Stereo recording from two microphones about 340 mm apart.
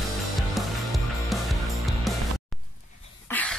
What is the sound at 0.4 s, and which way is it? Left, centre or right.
Music, centre.